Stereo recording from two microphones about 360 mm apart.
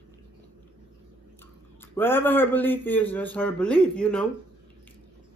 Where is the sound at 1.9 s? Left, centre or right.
Centre.